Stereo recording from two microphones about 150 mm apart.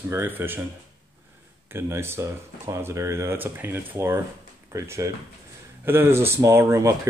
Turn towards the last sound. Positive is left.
turn(degrees=-20)  # may be behind; listen again after turning